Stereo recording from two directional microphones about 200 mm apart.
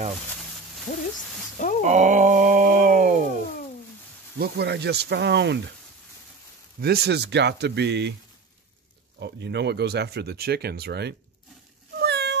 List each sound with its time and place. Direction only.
0.9 s a sound: 35° left (ahead or behind)
1.8 s a sound: 35° right (ahead or behind)
4.4 s speech: 55° right (ahead or behind)
6.8 s speech: 50° right (ahead or behind)
9.2 s speech: 55° right (ahead or behind)
12.0 s meow: 55° right (ahead or behind)